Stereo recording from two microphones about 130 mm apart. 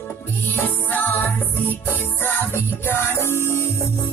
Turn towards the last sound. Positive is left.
turn(degrees=20)  # may be behind; listen again after turning